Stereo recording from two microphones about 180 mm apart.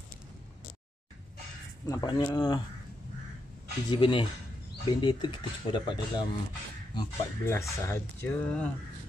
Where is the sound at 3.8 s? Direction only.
25° left (ahead or behind).